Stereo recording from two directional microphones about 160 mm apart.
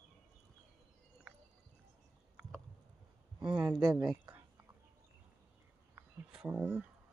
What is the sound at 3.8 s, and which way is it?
Speech, 25° right (ahead or behind).